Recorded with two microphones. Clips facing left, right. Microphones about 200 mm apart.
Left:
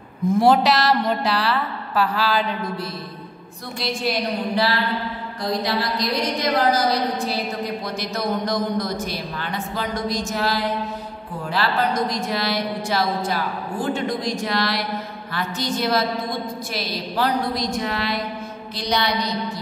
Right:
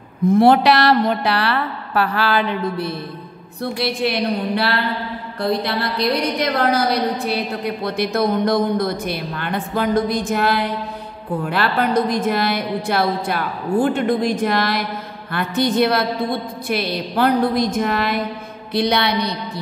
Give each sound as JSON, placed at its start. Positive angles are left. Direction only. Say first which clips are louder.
{"t": 0.3, "sound": "a woman's voice", "louder": "right 4 dB", "side_deg": -60}
{"t": 18.7, "sound": "a woman's voice", "louder": "right 5 dB", "side_deg": -60}